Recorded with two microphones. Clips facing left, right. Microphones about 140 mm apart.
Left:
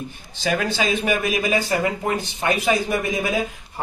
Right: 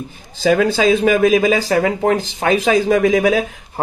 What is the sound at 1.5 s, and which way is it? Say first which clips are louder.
Speech: right 6 dB; 90° right.